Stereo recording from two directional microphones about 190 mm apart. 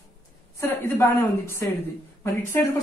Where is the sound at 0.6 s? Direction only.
10° left (ahead or behind).